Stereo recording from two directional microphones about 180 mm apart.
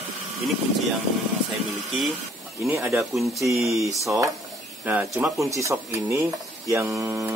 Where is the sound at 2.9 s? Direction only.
Centre (ahead or behind).